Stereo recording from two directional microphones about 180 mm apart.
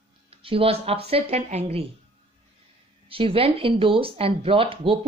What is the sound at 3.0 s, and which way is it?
Speech, 30° right (ahead or behind).